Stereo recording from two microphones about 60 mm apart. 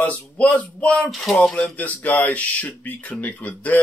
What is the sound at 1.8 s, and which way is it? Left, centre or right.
Speech, left.